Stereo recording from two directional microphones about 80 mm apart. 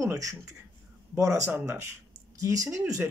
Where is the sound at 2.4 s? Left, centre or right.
Right.